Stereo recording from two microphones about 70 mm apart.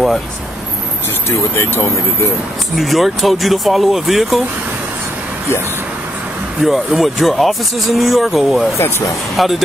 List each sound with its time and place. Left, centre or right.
1.6 s speech: left
2.7 s speech: centre
6.6 s speech: centre